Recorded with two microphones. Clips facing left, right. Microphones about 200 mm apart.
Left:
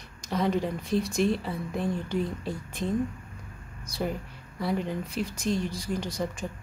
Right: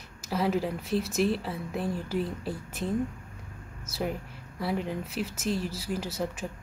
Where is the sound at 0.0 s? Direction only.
5° right (ahead or behind).